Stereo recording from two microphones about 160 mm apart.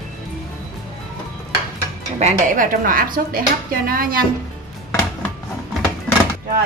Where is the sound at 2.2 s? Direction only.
50° right (ahead or behind).